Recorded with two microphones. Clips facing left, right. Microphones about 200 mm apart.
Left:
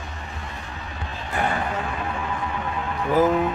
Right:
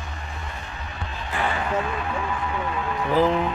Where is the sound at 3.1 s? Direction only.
10° left (ahead or behind).